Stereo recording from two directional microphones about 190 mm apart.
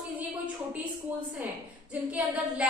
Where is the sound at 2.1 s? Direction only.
10° right (ahead or behind).